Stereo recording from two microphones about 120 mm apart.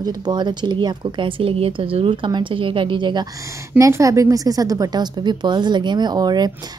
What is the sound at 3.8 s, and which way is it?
A woman's voice, 25° right (ahead or behind).